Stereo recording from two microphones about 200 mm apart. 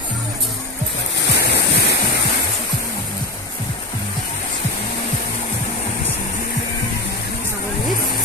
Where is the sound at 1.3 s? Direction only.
55° left (ahead or behind).